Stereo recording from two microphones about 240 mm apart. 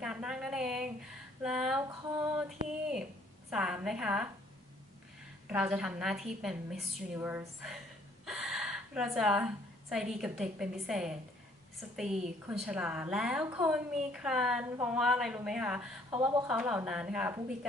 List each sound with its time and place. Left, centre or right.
0.0 s a sound: centre
2.9 s a woman's voice: centre
5.5 s a woman's voice: centre
8.3 s a sound: centre
10.1 s a woman's voice: centre
12.4 s a woman's voice: centre
16.1 s speech: centre
16.4 s a woman's voice: centre